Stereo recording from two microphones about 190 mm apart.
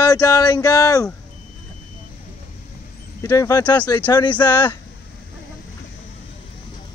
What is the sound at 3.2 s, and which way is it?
Speech, 20° left (ahead or behind).